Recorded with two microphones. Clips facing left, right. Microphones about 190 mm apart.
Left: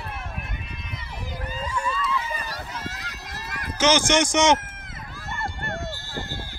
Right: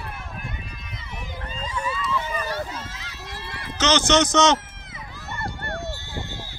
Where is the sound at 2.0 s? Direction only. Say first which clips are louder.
Right 1 dB; 5° left (ahead or behind).